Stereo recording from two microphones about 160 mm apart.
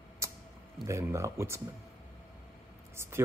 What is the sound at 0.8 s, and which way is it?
Speech, 20° right (ahead or behind).